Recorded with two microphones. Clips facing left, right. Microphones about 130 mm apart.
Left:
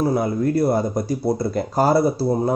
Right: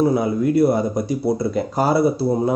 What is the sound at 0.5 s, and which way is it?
Speech, 15° right (ahead or behind).